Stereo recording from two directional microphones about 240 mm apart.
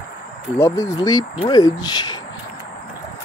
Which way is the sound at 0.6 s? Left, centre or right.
Centre.